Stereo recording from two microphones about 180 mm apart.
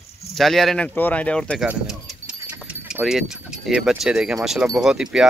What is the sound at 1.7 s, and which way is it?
Keys jangling, centre (ahead or behind).